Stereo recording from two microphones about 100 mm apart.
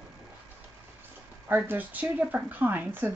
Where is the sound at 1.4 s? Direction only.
20° right (ahead or behind).